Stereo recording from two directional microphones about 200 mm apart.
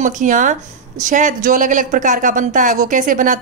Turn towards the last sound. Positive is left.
turn(degrees=-40)  # may be behind; listen again after turning